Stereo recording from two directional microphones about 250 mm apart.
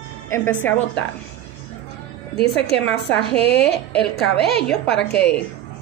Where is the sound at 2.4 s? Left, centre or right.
Left.